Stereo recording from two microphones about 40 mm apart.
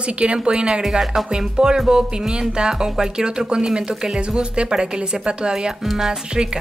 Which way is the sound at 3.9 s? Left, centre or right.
Centre.